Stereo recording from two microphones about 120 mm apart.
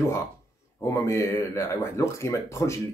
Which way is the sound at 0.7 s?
25° left (ahead or behind).